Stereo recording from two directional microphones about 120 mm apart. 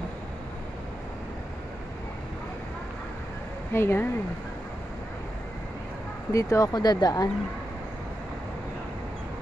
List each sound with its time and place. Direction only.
3.7 s speech: 20° left (ahead or behind)
6.3 s speech: 30° left (ahead or behind)